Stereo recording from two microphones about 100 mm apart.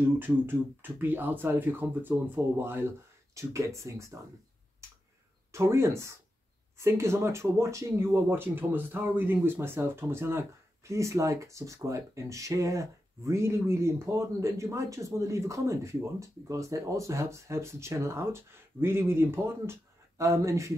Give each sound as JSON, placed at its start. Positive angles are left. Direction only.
{"t": 0.2, "sound": "speech", "side_deg": -20}
{"t": 5.5, "sound": "speech", "side_deg": -25}